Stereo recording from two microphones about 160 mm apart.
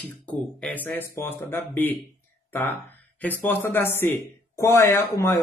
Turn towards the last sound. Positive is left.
turn(degrees=15)  # may be behind; listen again after turning